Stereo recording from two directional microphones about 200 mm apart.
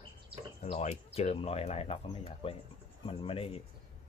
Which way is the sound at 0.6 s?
35° left (ahead or behind).